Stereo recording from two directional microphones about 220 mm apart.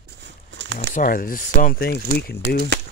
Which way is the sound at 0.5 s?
55° right (ahead or behind).